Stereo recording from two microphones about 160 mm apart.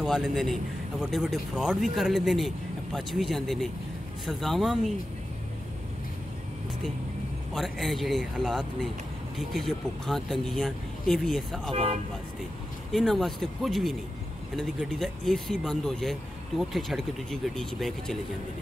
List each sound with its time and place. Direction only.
0.0 s speech: centre (ahead or behind)
7.5 s speech: centre (ahead or behind)
11.7 s speech: 40° right (ahead or behind)
12.9 s speech: centre (ahead or behind)